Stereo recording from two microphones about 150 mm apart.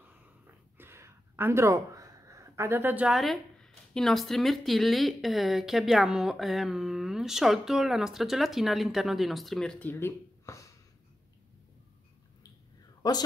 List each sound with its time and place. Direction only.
0.5 s speech: 15° right (ahead or behind); by 10.7 s 20° left (ahead or behind)
13.0 s speech: 25° left (ahead or behind)